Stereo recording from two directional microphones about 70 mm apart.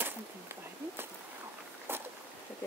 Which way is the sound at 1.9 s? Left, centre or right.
Right.